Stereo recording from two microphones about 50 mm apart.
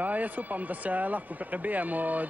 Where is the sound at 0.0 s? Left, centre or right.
Right.